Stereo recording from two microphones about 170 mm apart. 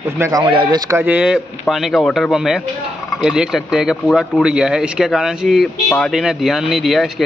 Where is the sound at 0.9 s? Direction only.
10° right (ahead or behind).